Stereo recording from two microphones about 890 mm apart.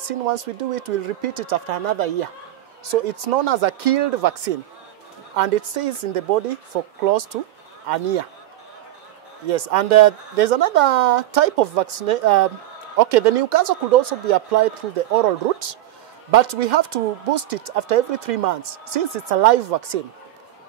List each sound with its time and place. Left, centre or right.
0.0 s speech: right
9.5 s speech: right